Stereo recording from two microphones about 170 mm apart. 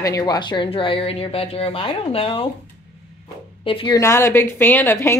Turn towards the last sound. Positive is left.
turn(degrees=15)  # may be behind; listen again after turning